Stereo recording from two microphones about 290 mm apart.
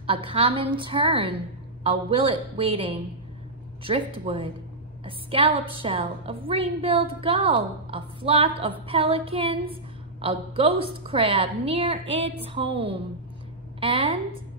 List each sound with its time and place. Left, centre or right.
0.0 s a woman's voice: centre